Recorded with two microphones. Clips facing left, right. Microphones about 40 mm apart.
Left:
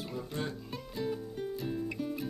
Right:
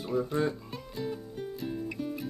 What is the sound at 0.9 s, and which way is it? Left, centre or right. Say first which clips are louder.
Music: even; centre.